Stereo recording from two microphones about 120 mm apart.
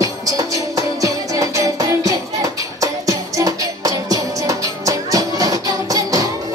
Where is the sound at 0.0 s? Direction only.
30° right (ahead or behind).